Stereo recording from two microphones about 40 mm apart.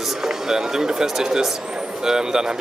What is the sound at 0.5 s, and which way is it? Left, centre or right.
Speech, centre.